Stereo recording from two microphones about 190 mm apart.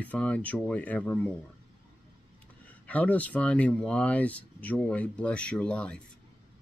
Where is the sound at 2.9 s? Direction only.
5° left (ahead or behind).